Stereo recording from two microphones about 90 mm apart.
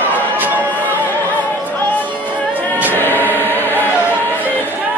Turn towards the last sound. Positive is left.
turn(degrees=20)  # may be behind; listen again after turning